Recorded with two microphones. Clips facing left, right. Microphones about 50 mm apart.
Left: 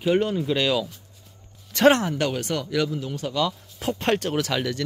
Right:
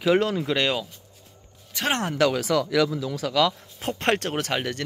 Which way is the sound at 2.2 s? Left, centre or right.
Right.